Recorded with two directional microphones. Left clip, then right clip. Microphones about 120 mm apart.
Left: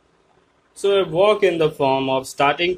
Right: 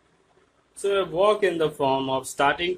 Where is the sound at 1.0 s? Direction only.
10° left (ahead or behind).